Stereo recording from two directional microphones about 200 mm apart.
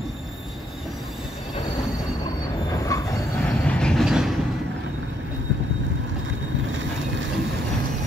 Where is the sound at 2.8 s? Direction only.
15° left (ahead or behind).